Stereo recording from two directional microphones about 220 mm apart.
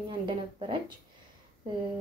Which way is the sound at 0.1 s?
20° right (ahead or behind).